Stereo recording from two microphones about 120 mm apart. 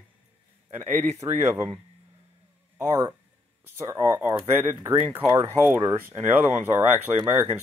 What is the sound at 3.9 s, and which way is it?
Speech, 20° right (ahead or behind).